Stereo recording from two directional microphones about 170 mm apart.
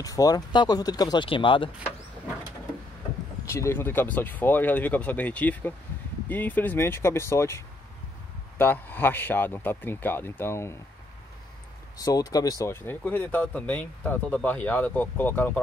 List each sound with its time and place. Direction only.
0.0 s speech: 20° left (ahead or behind)
3.4 s speech: 15° left (ahead or behind)
12.0 s speech: 20° left (ahead or behind)